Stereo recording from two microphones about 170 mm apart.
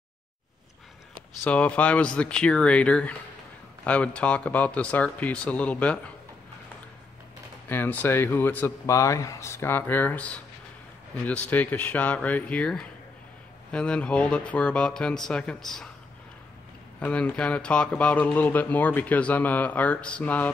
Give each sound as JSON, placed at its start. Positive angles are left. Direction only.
{"t": 1.4, "sound": "speech", "side_deg": 10}
{"t": 7.6, "sound": "speech", "side_deg": 10}
{"t": 17.0, "sound": "speech", "side_deg": 5}